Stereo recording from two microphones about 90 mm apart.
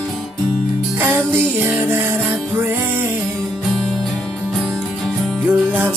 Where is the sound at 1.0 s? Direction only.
25° right (ahead or behind).